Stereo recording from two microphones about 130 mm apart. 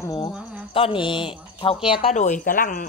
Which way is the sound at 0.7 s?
40° left (ahead or behind).